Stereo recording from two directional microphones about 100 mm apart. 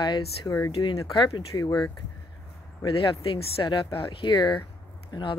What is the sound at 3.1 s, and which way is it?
Speech, 65° left (ahead or behind).